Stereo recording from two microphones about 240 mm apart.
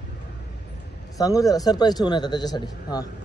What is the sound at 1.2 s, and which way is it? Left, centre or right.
A man's voice, centre.